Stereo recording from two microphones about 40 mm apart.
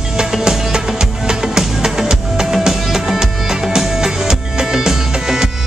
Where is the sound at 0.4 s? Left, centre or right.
Centre.